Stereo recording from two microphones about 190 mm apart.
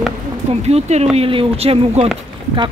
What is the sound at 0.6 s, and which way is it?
Speech, 35° right (ahead or behind).